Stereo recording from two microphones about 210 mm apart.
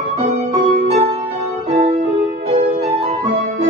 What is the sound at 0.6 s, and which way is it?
Music, 30° right (ahead or behind).